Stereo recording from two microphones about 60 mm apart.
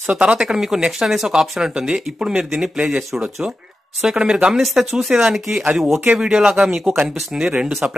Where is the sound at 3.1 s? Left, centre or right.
Centre.